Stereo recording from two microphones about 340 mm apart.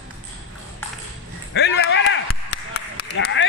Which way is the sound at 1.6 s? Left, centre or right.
Left.